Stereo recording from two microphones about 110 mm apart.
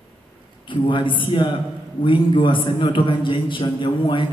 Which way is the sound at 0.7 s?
50° left (ahead or behind).